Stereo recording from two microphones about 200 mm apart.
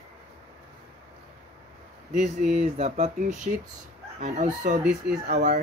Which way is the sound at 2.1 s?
40° right (ahead or behind).